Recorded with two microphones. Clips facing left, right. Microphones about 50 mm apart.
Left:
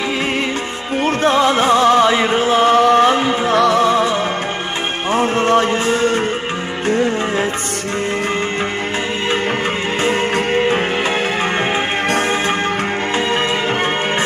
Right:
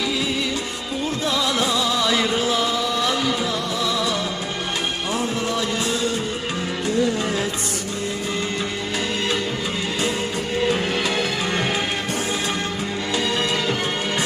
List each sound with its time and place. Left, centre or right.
1.0 s music: left
3.5 s music: left
3.8 s music: left